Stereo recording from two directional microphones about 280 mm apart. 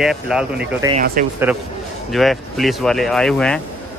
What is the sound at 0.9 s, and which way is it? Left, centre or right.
Speech, right.